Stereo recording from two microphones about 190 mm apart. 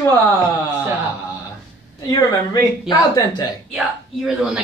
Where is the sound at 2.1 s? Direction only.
20° left (ahead or behind).